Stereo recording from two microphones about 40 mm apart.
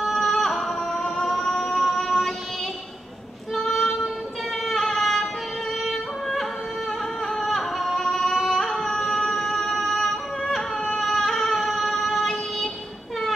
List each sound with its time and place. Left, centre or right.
0.0 s a sound: centre
0.9 s music: left
1.2 s music: centre
3.5 s child singing: centre
4.6 s music: centre
5.9 s yodeling: centre
7.2 s singing: centre
11.0 s child singing: centre